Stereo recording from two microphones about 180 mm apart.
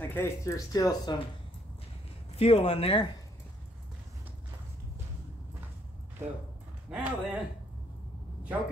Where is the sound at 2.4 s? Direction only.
35° left (ahead or behind).